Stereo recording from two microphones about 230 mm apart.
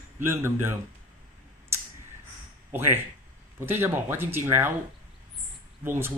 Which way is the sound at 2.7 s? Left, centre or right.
Centre.